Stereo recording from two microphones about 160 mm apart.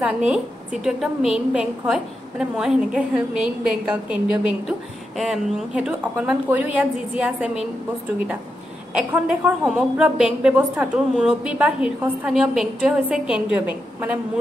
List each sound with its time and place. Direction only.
0.0 s a woman's voice: 5° right (ahead or behind)
8.9 s a woman's voice: 10° right (ahead or behind)